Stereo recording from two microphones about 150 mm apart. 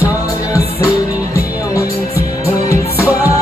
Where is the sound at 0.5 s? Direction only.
20° left (ahead or behind).